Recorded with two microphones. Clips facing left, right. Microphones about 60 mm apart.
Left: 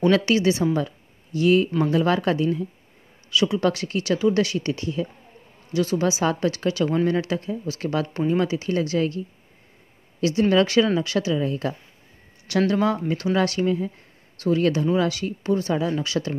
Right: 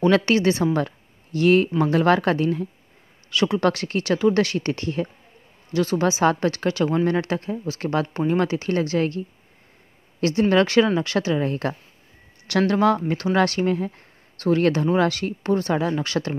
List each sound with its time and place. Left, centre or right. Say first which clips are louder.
0.1 s speech: right 1 dB; right
0.7 s a sound: right 1 dB; right
1.9 s speech: right 2 dB; right
10.5 s speech: right 2 dB; right
12.4 s speech: right 1 dB; right
13.1 s speech: right 2 dB; right